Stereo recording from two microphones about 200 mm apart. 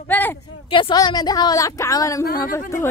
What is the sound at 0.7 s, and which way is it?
A woman's voice, 25° left (ahead or behind).